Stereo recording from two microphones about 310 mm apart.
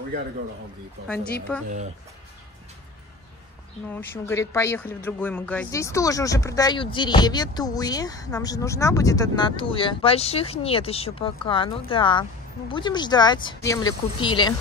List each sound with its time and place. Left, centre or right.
1.0 s a woman's voice: centre
3.9 s speech: centre